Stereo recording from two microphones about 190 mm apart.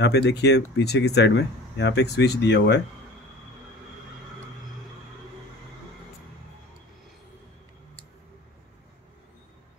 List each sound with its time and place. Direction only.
0.0 s speech: 65° left (ahead or behind)